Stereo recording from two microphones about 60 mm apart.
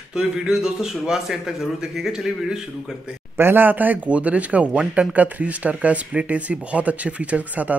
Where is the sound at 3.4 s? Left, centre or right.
Right.